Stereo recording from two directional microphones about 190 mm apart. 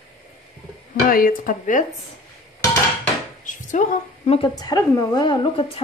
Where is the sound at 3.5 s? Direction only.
40° left (ahead or behind).